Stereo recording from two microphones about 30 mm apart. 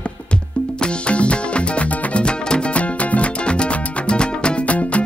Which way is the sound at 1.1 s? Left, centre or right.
Left.